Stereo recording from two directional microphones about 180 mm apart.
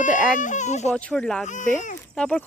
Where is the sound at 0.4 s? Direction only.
45° left (ahead or behind).